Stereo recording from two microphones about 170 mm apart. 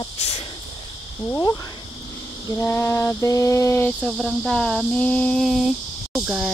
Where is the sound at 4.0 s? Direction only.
Centre (ahead or behind).